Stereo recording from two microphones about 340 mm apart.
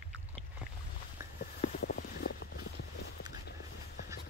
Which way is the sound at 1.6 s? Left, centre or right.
Left.